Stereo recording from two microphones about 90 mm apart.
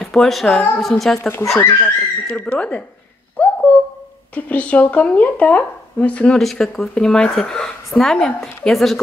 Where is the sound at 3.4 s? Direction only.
15° left (ahead or behind).